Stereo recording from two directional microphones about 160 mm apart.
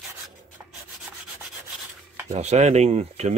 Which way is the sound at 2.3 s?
45° right (ahead or behind).